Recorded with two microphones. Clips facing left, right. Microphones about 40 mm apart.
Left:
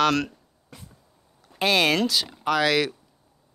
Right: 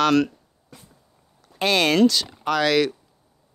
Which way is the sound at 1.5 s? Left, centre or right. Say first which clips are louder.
Right 2 dB; centre.